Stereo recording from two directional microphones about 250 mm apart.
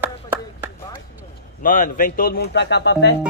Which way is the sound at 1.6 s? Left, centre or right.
Left.